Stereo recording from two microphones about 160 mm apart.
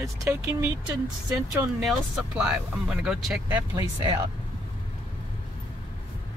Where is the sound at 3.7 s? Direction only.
25° right (ahead or behind).